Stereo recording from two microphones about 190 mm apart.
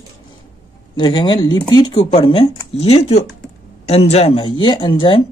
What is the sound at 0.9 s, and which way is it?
Speech, 25° left (ahead or behind).